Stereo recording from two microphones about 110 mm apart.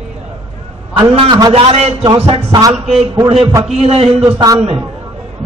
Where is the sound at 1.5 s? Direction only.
65° right (ahead or behind).